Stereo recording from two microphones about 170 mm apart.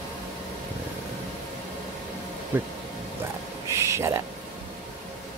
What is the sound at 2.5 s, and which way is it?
Speech, 10° right (ahead or behind).